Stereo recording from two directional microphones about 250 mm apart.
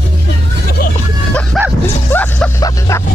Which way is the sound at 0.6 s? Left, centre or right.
Left.